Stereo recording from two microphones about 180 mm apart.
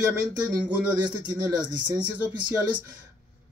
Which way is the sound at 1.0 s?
25° right (ahead or behind).